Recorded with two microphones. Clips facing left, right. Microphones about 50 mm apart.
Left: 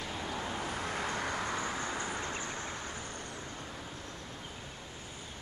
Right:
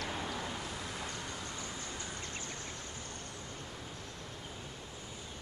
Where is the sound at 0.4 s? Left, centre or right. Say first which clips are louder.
Left 4 dB; left.